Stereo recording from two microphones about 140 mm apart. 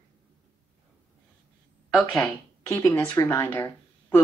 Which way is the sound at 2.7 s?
20° left (ahead or behind).